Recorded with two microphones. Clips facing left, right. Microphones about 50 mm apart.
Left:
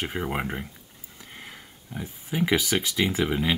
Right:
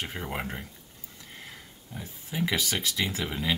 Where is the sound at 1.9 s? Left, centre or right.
Left.